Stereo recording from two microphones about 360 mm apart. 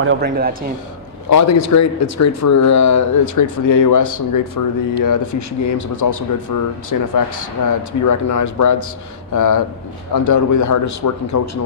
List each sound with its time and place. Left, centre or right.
0.0 s a man's voice: right
1.3 s speech: left